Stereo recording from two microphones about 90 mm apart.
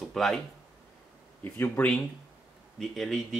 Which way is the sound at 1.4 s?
25° left (ahead or behind).